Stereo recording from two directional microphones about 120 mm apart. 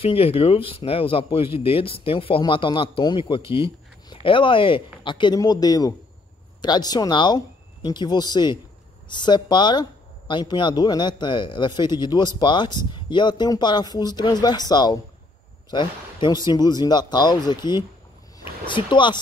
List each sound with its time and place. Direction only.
0.0 s speech: 50° left (ahead or behind)